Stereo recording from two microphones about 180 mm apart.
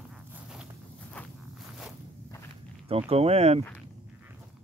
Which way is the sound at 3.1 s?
35° right (ahead or behind).